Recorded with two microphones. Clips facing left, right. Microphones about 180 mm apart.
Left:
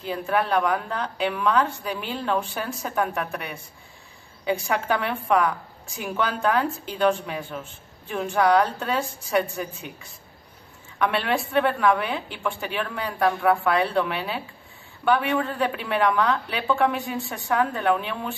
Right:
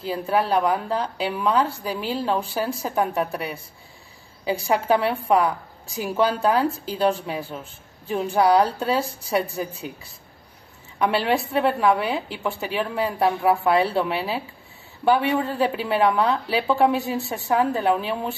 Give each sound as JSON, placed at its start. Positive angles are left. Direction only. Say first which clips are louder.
{"t": 0.0, "sound": "a woman's voice", "louder": "right 2 dB", "side_deg": -30}
{"t": 11.5, "sound": "a woman's voice", "louder": "even", "side_deg": -25}